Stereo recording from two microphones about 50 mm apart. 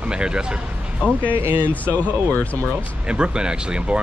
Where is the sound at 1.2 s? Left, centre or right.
Right.